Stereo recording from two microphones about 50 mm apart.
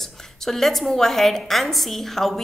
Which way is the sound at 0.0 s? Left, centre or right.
Centre.